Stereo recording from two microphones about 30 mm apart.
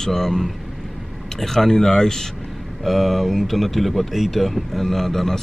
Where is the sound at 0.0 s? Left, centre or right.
Centre.